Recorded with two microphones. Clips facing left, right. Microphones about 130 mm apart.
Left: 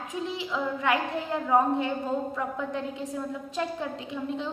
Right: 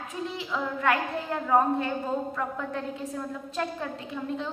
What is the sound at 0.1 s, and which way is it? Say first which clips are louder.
A woman's voice: left 1 dB; 15° left (ahead or behind).